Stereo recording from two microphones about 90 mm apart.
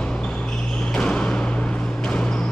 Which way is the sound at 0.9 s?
10° left (ahead or behind).